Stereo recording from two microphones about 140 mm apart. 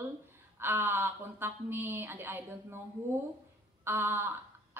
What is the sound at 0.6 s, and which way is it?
A woman's voice, 15° right (ahead or behind).